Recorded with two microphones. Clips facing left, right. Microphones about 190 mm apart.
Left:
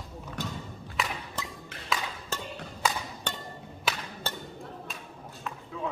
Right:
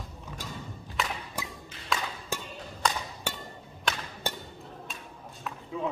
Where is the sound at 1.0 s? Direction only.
Centre (ahead or behind).